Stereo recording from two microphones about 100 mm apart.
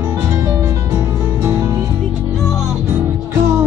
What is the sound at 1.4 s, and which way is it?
Music, 35° right (ahead or behind).